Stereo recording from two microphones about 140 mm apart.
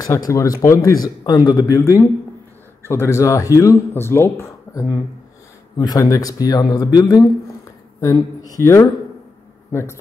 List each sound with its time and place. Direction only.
0.3 s speech: 20° left (ahead or behind)